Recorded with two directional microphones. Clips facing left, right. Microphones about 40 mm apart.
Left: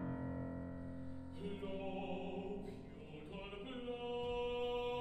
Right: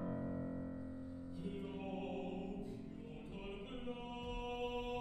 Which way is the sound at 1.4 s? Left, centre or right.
Left.